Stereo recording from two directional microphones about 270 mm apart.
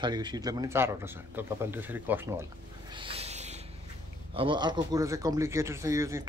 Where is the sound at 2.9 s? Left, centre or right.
Right.